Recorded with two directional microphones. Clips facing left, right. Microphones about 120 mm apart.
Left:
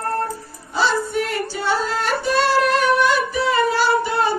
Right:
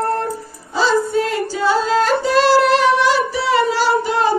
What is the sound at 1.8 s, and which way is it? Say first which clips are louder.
Music: right 7 dB; 90° right.